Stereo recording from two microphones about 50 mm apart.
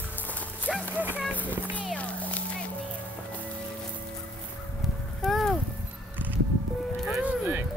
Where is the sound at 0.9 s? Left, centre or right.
Right.